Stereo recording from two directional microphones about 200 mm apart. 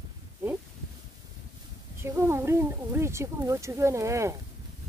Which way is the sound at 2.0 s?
15° right (ahead or behind).